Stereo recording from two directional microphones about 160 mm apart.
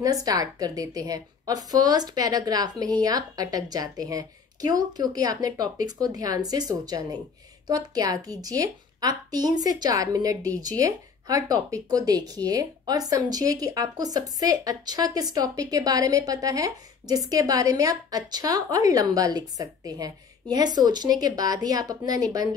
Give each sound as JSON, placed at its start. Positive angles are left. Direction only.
{"t": 0.0, "sound": "a woman's voice", "side_deg": -25}